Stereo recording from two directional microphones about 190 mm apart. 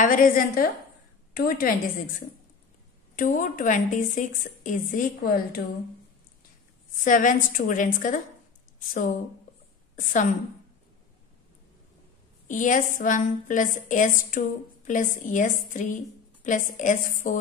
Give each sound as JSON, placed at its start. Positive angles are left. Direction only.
{"t": 0.0, "sound": "a woman's voice", "side_deg": 45}
{"t": 7.1, "sound": "a woman's voice", "side_deg": 45}
{"t": 12.4, "sound": "a woman's voice", "side_deg": 45}